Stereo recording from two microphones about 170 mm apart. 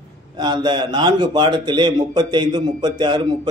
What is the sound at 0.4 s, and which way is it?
A man's voice, 25° right (ahead or behind).